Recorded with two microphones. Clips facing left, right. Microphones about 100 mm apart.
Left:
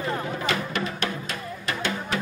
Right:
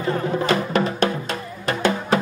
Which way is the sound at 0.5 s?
40° right (ahead or behind).